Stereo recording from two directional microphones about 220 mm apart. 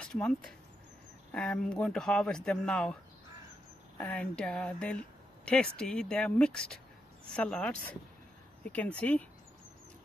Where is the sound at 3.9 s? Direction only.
5° left (ahead or behind).